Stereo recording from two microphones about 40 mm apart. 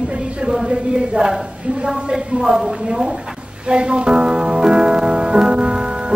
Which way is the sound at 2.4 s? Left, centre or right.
Centre.